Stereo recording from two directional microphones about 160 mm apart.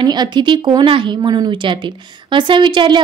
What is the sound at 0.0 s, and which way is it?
A woman's voice, 25° right (ahead or behind).